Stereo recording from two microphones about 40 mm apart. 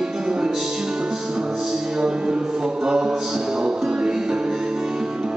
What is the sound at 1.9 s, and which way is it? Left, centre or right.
Music, right.